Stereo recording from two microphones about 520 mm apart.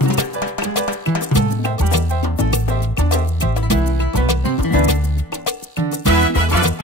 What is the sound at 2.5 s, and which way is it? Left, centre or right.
Music, left.